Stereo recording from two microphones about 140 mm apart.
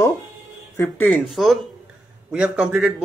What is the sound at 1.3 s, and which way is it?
A man's voice, centre (ahead or behind).